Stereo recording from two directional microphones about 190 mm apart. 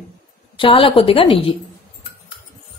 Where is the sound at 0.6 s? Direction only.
25° left (ahead or behind).